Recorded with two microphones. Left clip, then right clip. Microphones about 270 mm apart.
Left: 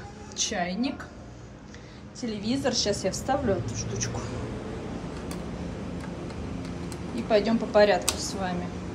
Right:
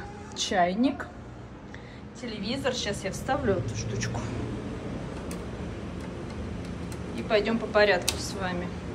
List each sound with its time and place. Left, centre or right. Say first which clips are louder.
0.4 s a woman's voice: right 4 dB; centre
2.2 s a woman's voice: left 2 dB; centre
7.2 s a woman's voice: left 2 dB; centre